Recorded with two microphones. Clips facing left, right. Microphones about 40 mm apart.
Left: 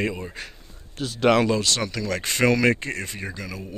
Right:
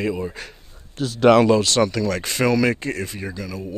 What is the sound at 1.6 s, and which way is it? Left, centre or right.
Speech, centre.